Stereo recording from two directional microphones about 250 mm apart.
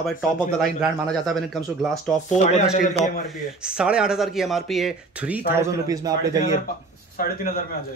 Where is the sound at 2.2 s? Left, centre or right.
Left.